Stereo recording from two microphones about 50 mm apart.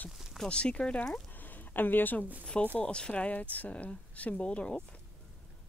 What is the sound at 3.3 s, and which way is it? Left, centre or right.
Speech, left.